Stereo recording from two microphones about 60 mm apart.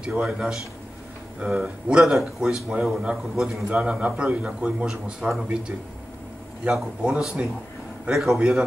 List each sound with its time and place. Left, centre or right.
0.0 s a man's voice: centre
3.3 s a man's voice: centre
3.8 s a man's voice: centre